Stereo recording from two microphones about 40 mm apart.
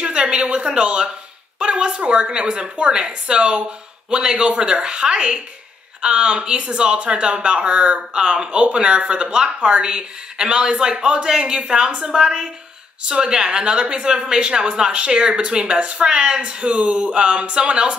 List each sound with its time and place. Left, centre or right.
0.0 s a woman's voice: right